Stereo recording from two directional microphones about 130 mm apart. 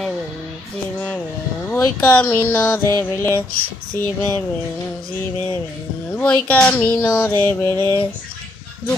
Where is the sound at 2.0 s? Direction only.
10° left (ahead or behind).